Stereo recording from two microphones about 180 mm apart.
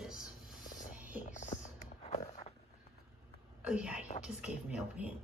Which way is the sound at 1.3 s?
40° left (ahead or behind).